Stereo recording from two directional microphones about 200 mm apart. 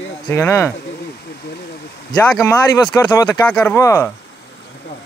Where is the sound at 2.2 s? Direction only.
10° left (ahead or behind).